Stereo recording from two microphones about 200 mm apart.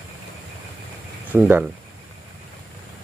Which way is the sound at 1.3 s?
5° right (ahead or behind).